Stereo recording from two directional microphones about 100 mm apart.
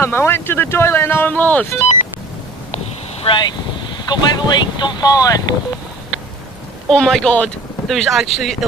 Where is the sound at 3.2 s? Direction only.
50° left (ahead or behind).